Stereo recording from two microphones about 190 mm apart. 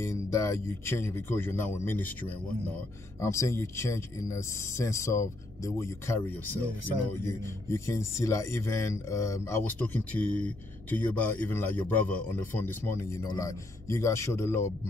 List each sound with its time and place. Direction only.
0.0 s speech: 15° left (ahead or behind)